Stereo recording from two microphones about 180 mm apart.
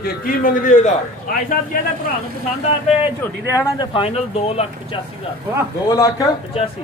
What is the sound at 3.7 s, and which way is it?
Speech, 25° left (ahead or behind).